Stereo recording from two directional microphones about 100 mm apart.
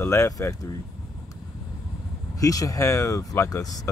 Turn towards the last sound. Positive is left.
turn(degrees=35)  # may be behind; listen again after turning